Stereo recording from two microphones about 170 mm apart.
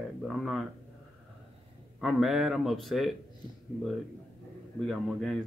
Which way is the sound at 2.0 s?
Centre (ahead or behind).